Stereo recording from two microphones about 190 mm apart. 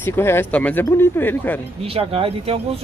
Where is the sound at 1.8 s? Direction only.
30° right (ahead or behind).